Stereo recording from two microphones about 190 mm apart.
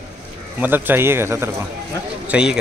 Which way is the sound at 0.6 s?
10° right (ahead or behind).